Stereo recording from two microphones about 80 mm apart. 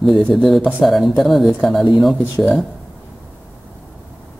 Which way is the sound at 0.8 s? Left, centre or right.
Centre.